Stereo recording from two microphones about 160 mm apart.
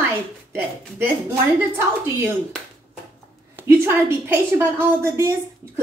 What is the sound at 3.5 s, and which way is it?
A woman's voice, 15° right (ahead or behind).